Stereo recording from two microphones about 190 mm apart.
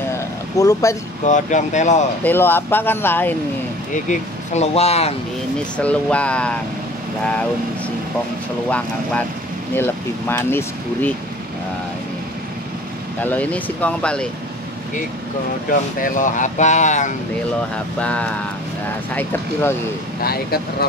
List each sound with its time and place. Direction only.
0.6 s speech: 20° left (ahead or behind)
1.2 s speech: 40° left (ahead or behind)
2.2 s speech: 10° left (ahead or behind)
3.9 s speech: 40° left (ahead or behind)
5.6 s speech: 5° left (ahead or behind)
8.6 s speech: 5° left (ahead or behind)
13.2 s speech: 10° left (ahead or behind)
16.0 s speech: 40° left (ahead or behind)
18.0 s speech: 5° left (ahead or behind)
20.2 s speech: 55° left (ahead or behind)